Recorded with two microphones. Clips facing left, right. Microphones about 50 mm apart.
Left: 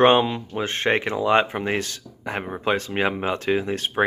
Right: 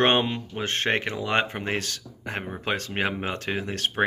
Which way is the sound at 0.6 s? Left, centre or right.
Left.